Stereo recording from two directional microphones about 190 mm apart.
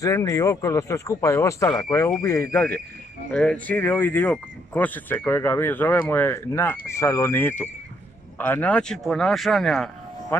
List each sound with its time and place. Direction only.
0.0 s speech: 15° left (ahead or behind); by 9.8 s centre (ahead or behind)